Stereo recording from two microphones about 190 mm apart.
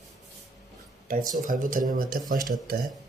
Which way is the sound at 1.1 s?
45° right (ahead or behind).